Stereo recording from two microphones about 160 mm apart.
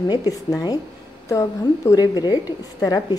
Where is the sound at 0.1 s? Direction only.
25° left (ahead or behind).